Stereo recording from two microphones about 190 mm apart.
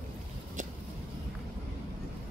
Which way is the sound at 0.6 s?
40° right (ahead or behind).